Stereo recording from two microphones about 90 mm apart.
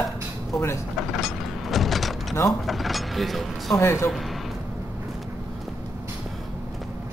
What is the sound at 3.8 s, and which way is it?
Speech, 30° left (ahead or behind).